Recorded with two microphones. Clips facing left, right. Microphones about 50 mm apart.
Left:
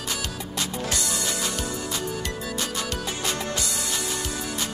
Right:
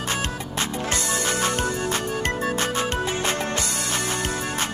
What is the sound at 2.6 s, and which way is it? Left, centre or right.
Music, right.